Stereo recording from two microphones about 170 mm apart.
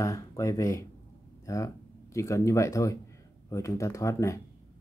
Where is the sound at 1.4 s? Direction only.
20° left (ahead or behind).